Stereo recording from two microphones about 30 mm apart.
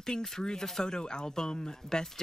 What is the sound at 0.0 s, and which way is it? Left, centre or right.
Speech, centre.